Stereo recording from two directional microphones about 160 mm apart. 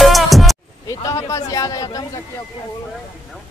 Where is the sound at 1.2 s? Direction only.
20° left (ahead or behind).